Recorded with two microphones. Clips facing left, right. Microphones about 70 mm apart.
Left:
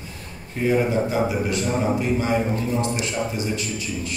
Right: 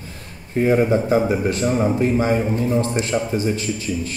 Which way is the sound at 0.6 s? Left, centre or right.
Right.